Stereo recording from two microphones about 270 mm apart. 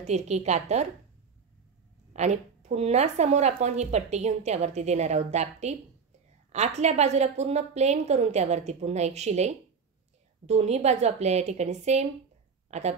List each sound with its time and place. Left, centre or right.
0.0 s speech: right
2.1 s speech: right